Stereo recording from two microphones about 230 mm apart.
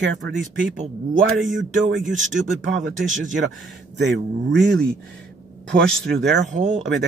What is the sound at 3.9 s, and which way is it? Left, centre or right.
Speech, right.